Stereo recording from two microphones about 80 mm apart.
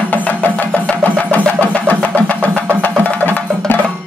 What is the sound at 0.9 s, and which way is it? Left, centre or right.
Vehicle, centre.